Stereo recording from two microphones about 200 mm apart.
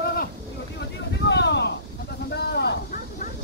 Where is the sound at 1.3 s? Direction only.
60° left (ahead or behind).